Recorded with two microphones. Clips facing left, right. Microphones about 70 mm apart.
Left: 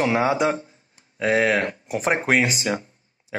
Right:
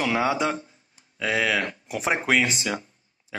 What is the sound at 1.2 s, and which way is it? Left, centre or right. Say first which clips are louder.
Speech: left 5 dB; left.